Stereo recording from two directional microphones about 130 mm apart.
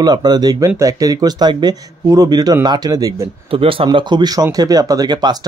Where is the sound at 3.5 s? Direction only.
45° right (ahead or behind).